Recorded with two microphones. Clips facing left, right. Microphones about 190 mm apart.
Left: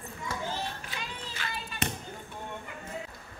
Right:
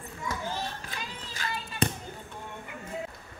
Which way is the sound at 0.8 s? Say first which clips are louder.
Even; 40° right (ahead or behind).